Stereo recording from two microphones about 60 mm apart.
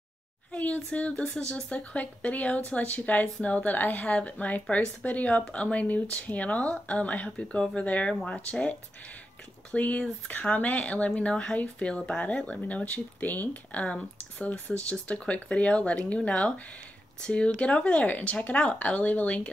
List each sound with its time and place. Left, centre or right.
0.5 s speech: centre